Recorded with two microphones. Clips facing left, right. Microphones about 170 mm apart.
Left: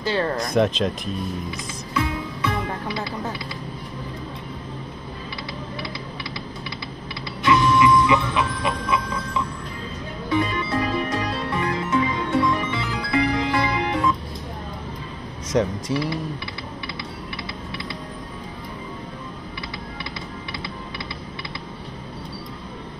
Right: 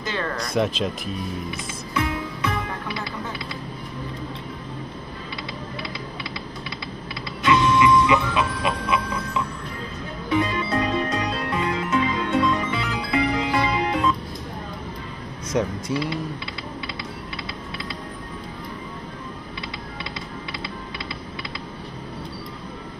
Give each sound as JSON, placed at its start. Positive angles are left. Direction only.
{"t": 0.0, "sound": "speech", "side_deg": 35}
{"t": 0.6, "sound": "speech", "side_deg": -5}
{"t": 7.4, "sound": "music", "side_deg": -20}
{"t": 15.5, "sound": "speech", "side_deg": 0}
{"t": 15.9, "sound": "speech", "side_deg": -20}